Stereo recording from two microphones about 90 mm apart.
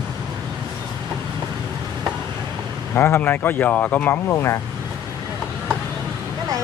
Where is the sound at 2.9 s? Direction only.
25° left (ahead or behind).